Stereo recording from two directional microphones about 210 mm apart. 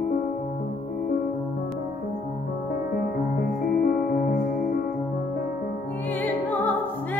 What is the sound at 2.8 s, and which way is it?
Music, 45° left (ahead or behind).